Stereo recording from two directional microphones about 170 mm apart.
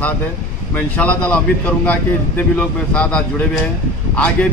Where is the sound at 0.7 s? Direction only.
10° left (ahead or behind).